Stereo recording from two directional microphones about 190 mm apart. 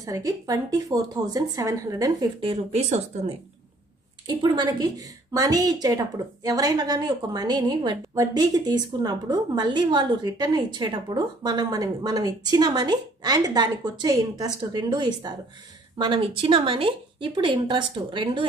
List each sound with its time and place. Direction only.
0.0 s a woman's voice: 20° right (ahead or behind)
2.5 s speech: 35° right (ahead or behind)
4.3 s a woman's voice: 25° right (ahead or behind)